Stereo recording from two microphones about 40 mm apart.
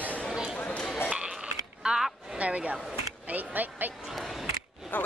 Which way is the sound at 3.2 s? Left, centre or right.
Right.